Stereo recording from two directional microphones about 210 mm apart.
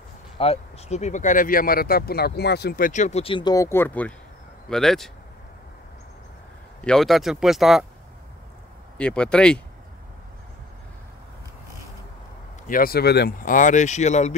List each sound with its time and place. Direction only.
0.4 s speech: 30° left (ahead or behind); by 5.1 s centre (ahead or behind)
6.8 s speech: centre (ahead or behind)
8.9 s speech: 5° left (ahead or behind)
12.6 s speech: 45° left (ahead or behind)